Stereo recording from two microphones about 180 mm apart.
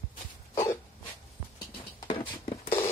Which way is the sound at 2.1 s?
30° left (ahead or behind).